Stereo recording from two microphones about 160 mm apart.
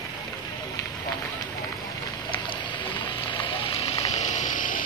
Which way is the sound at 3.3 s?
35° left (ahead or behind).